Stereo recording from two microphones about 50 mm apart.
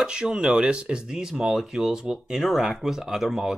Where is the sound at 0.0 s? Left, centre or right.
Centre.